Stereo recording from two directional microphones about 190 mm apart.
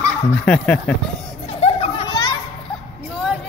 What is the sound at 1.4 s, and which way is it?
Music, 35° left (ahead or behind).